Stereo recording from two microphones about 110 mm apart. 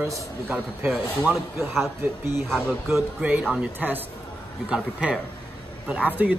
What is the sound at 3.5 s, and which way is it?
A man's voice, 15° right (ahead or behind).